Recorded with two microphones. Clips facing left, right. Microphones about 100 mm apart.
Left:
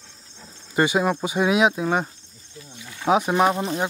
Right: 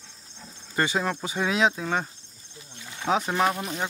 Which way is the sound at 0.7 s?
15° left (ahead or behind).